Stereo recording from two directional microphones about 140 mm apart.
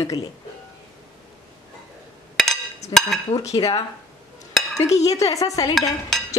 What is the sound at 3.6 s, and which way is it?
Speech, 25° left (ahead or behind).